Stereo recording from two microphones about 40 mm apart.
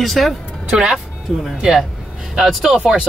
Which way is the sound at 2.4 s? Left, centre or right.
Centre.